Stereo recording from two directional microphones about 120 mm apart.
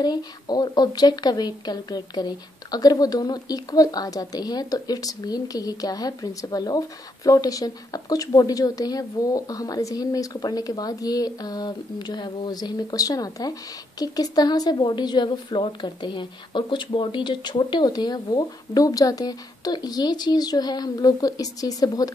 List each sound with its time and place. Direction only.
0.0 s a woman's voice: 35° left (ahead or behind)